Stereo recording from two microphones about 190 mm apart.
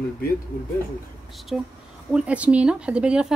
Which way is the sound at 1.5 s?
Centre (ahead or behind).